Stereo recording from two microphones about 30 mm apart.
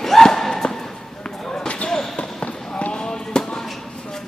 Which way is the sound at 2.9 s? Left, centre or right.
Left.